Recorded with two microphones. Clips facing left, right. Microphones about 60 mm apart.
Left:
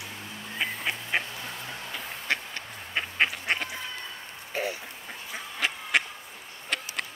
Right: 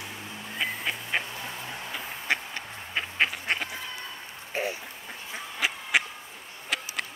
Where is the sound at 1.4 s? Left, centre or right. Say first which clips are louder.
Right 1 dB; centre.